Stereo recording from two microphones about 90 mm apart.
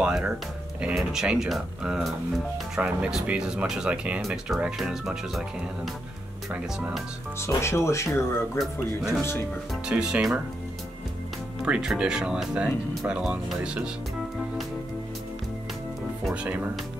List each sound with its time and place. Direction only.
0.0 s speech: 10° right (ahead or behind)
7.3 s speech: 30° left (ahead or behind)
8.7 s speech: 5° right (ahead or behind)
9.2 s speech: 25° left (ahead or behind)
9.8 s speech: 10° right (ahead or behind)
11.6 s speech: 10° right (ahead or behind)
16.4 s speech: 15° right (ahead or behind)